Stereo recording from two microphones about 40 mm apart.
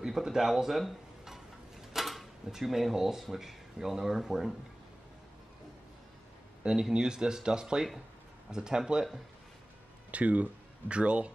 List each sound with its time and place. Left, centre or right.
0.0 s speech: centre
6.6 s speech: centre
10.1 s speech: right